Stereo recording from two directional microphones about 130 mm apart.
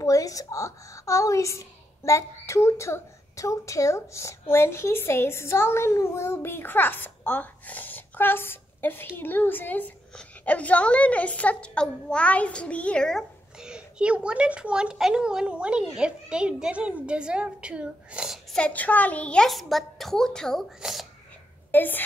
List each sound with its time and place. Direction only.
0.0 s a woman's voice: 25° left (ahead or behind); by 13.2 s 5° left (ahead or behind)
13.6 s a child's voice: 5° right (ahead or behind)
18.6 s a woman's voice: 10° left (ahead or behind)
21.7 s a woman's voice: 15° left (ahead or behind)